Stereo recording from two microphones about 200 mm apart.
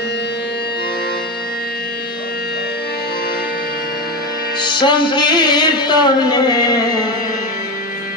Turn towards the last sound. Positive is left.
turn(degrees=20)  # may be behind; listen again after turning